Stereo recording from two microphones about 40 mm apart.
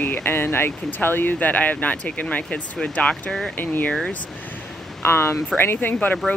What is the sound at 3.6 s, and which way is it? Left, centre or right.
Speech, left.